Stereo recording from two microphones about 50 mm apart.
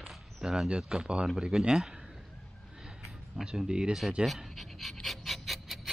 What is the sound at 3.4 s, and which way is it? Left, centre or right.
Speech, centre.